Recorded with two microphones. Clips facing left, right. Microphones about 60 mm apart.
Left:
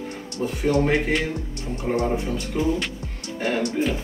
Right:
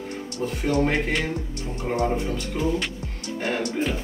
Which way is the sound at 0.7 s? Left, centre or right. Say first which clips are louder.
Left 2 dB; centre.